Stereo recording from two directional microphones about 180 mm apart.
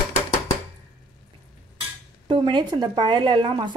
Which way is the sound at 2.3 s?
25° right (ahead or behind).